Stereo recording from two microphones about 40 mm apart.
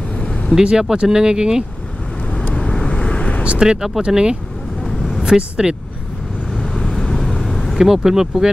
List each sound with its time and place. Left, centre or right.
0.6 s speech: centre
2.5 s vehicle: left
3.5 s speech: centre
6.5 s vehicle: centre
7.7 s speech: centre